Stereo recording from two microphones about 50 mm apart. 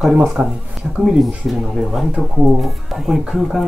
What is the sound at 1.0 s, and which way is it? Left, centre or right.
Speech, centre.